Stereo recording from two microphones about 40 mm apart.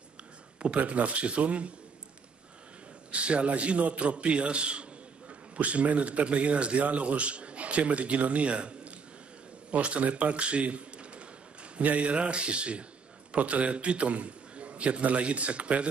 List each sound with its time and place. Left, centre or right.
0.7 s a man's voice: right
3.1 s a man's voice: right